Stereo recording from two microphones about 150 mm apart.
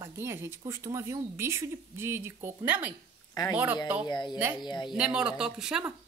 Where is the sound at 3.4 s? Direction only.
30° left (ahead or behind).